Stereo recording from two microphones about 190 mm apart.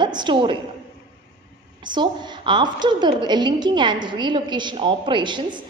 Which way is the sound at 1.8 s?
25° right (ahead or behind).